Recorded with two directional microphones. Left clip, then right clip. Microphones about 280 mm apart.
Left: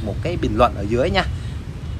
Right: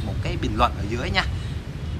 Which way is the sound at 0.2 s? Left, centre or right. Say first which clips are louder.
Left 5 dB; centre.